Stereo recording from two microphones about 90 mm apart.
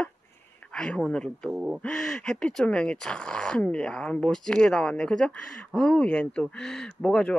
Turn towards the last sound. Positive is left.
turn(degrees=10)  # may be behind; listen again after turning